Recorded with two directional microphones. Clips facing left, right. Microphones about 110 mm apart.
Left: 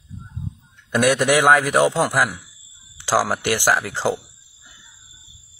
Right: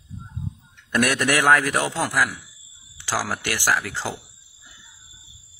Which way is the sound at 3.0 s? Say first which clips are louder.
Left 7 dB; 25° left (ahead or behind).